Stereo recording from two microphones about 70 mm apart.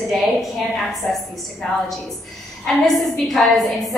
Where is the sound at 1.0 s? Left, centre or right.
Left.